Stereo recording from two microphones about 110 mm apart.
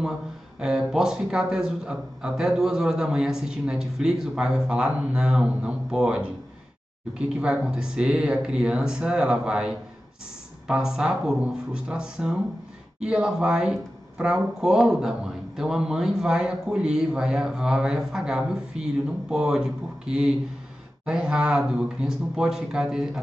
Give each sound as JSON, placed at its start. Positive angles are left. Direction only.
{"t": 0.6, "sound": "speech", "side_deg": -5}